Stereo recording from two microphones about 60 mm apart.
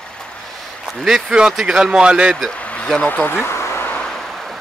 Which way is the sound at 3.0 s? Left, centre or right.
Left.